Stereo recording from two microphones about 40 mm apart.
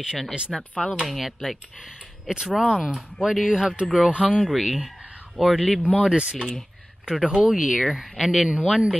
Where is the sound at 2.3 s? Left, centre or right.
Right.